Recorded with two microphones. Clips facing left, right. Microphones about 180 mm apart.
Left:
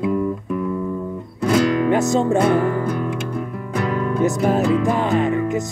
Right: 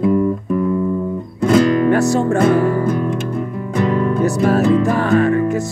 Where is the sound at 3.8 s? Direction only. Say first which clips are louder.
Right 6 dB; 25° right (ahead or behind).